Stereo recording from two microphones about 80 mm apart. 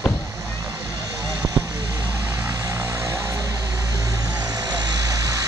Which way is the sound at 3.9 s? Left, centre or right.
Right.